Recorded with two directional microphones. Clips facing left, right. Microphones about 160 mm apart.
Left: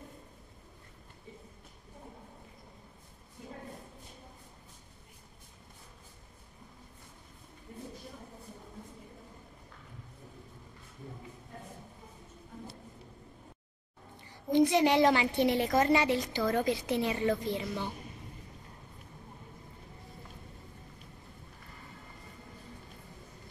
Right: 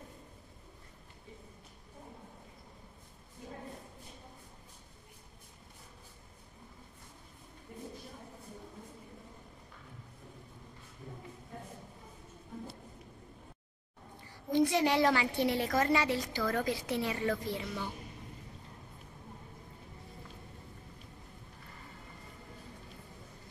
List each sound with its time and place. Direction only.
14.5 s a woman's voice: 20° left (ahead or behind)